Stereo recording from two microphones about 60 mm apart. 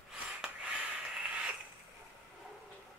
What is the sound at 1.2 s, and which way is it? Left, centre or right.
Creak, centre.